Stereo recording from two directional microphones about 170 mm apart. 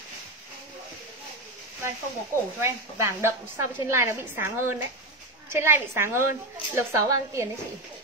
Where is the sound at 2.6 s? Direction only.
15° right (ahead or behind).